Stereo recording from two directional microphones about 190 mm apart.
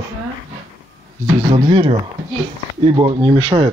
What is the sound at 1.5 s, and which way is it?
Speech, 25° right (ahead or behind).